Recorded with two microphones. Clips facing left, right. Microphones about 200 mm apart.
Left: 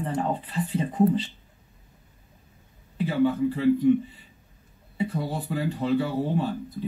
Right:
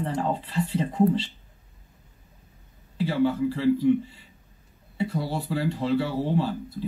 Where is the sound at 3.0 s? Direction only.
30° right (ahead or behind).